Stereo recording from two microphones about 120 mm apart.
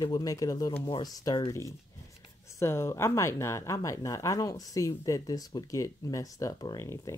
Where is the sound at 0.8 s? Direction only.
30° left (ahead or behind).